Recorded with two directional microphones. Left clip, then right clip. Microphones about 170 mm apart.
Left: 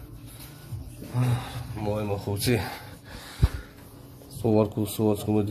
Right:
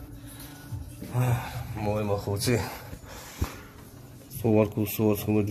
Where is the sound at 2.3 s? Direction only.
45° left (ahead or behind).